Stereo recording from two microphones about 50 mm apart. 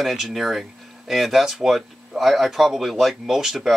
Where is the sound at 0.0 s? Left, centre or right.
Centre.